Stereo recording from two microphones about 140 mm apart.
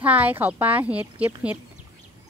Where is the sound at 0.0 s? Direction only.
10° right (ahead or behind).